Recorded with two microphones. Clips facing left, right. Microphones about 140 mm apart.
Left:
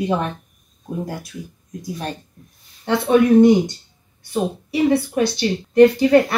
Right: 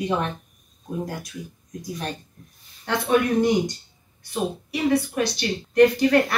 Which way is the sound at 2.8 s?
25° left (ahead or behind).